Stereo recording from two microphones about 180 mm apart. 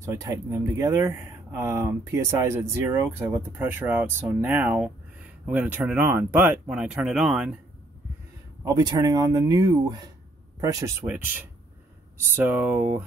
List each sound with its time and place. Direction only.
0.0 s speech: 15° right (ahead or behind)
8.6 s speech: 25° right (ahead or behind)